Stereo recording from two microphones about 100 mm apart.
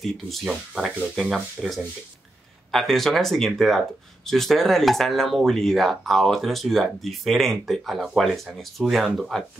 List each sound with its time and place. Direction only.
0.0 s speech: centre (ahead or behind)